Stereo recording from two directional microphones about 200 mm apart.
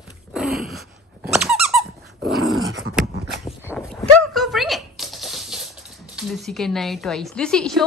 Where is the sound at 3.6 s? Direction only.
10° left (ahead or behind).